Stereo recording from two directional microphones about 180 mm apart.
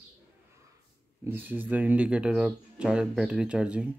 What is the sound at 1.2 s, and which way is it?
Speech, 10° right (ahead or behind).